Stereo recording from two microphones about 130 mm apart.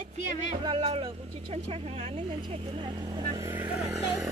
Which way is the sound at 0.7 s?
45° right (ahead or behind).